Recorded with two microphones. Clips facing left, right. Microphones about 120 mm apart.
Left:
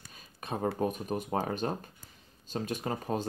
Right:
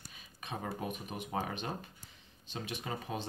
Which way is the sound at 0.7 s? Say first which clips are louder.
Left 8 dB; 40° left (ahead or behind).